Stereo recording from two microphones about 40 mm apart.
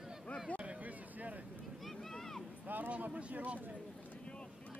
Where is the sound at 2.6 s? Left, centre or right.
Right.